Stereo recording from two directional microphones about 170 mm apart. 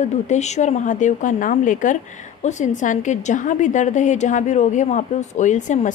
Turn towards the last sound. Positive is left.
turn(degrees=45)  # may be behind; listen again after turning